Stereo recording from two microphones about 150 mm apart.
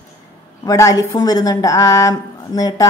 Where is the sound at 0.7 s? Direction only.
20° left (ahead or behind).